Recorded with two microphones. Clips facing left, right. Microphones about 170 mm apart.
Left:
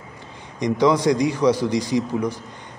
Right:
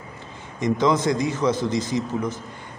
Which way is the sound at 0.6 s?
15° left (ahead or behind).